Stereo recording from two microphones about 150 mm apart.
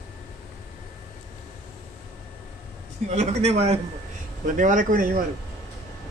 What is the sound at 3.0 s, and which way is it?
Speech, 45° right (ahead or behind).